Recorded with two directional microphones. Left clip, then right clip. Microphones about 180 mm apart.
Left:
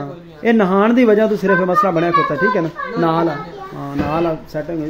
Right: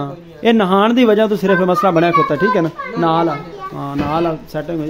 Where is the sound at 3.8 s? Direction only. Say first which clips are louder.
Right 1 dB; 10° right (ahead or behind).